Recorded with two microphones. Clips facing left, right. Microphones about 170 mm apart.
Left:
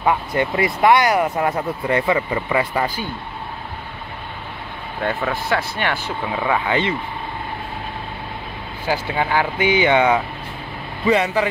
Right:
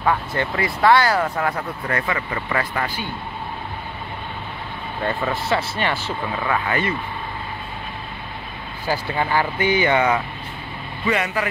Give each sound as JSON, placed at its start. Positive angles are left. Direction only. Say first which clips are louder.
{"t": 0.0, "sound": "speech", "louder": "left 2 dB", "side_deg": 15}
{"t": 5.0, "sound": "speech", "louder": "left 1 dB", "side_deg": 0}
{"t": 6.4, "sound": "speech", "louder": "left 3 dB", "side_deg": 15}
{"t": 8.8, "sound": "speech", "louder": "left 1 dB", "side_deg": 5}
{"t": 11.1, "sound": "speech", "louder": "left 5 dB", "side_deg": 25}